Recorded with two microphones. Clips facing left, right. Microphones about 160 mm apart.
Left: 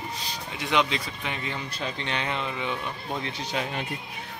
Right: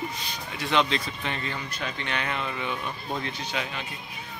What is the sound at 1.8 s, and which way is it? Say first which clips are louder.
Speech: left 1 dB; 25° left (ahead or behind).